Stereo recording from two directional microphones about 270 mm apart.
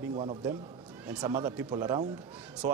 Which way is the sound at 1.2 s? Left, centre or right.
Centre.